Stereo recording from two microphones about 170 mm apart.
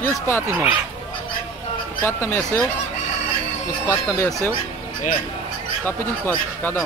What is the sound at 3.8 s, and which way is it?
Speech, 15° left (ahead or behind).